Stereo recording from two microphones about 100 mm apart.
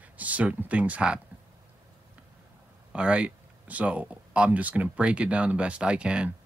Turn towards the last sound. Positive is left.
turn(degrees=-10)  # may be behind; listen again after turning